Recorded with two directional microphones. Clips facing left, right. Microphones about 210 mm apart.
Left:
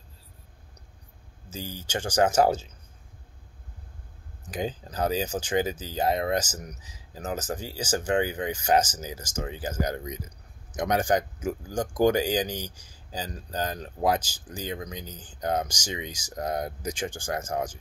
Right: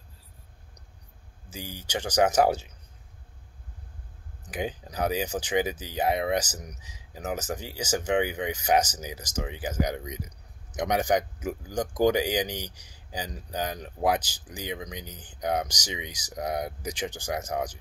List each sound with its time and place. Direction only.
1.5 s speech: 15° right (ahead or behind)
4.5 s speech: 15° right (ahead or behind)